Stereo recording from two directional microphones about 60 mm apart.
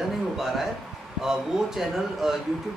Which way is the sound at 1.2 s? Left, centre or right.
Centre.